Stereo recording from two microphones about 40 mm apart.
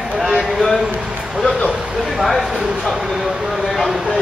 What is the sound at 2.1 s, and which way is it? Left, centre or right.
Speech, centre.